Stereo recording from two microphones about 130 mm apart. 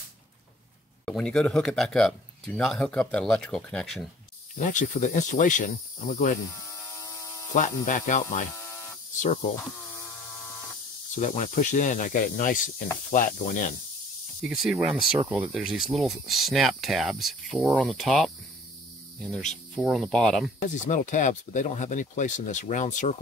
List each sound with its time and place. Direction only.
1.0 s speech: 5° left (ahead or behind)
4.6 s speech: 75° left (ahead or behind)
7.5 s speech: 80° left
11.1 s speech: 75° left (ahead or behind)
14.4 s speech: 5° right (ahead or behind)
19.8 s speech: centre (ahead or behind)
20.6 s speech: 75° left (ahead or behind)